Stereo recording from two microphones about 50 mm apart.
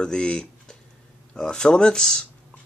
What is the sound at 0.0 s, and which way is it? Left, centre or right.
Speech, centre.